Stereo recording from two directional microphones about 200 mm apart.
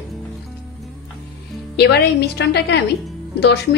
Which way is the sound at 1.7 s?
55° left (ahead or behind).